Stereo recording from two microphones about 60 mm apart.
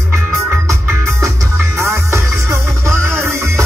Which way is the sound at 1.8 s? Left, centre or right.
Right.